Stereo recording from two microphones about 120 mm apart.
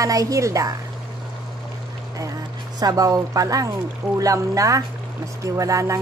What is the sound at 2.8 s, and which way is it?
Speech, 30° right (ahead or behind).